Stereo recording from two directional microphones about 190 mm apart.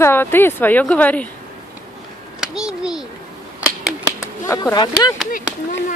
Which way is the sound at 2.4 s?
5° right (ahead or behind).